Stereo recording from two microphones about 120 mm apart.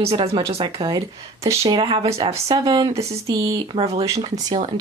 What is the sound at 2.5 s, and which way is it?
Speech, 35° right (ahead or behind).